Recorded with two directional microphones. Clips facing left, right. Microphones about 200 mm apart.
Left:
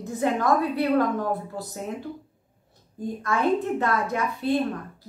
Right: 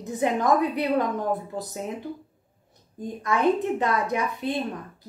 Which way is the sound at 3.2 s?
15° right (ahead or behind).